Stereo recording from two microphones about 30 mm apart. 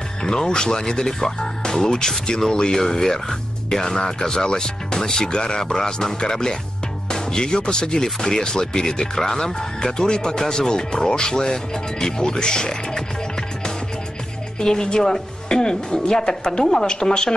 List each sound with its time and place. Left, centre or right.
0.2 s speech: left
14.6 s speech: left